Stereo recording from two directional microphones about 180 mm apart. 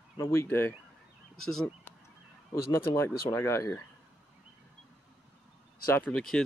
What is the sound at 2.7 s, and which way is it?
Speech, 15° left (ahead or behind).